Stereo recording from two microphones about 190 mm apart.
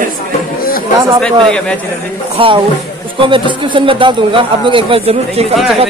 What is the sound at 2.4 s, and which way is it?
A man's voice, 30° right (ahead or behind).